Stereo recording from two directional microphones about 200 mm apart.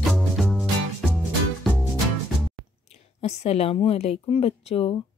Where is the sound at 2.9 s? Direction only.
30° left (ahead or behind).